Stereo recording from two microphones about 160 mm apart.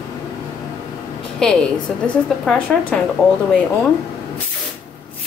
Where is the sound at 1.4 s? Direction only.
5° left (ahead or behind).